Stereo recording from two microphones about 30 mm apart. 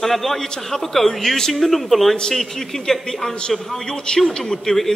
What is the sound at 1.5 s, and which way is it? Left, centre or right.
A man's voice, centre.